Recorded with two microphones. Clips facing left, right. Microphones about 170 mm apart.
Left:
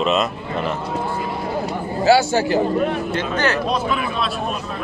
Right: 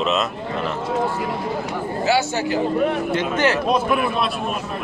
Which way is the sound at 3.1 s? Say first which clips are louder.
Right 1 dB; 25° right (ahead or behind).